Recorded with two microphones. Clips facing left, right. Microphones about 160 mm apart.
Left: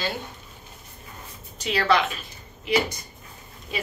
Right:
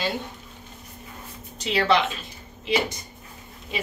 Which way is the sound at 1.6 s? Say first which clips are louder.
Right 1 dB; 25° right (ahead or behind).